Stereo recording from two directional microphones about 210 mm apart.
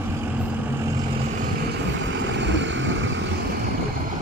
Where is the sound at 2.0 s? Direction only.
60° right (ahead or behind).